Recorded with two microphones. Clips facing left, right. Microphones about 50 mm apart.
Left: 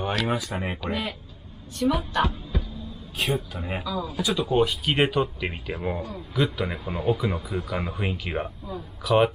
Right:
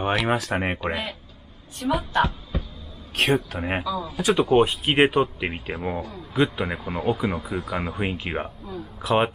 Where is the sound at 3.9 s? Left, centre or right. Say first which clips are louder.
Even; centre.